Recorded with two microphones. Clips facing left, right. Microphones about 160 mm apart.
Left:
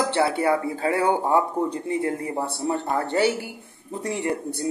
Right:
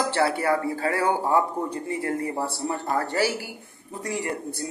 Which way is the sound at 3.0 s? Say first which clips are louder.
Left 3 dB; 25° left (ahead or behind).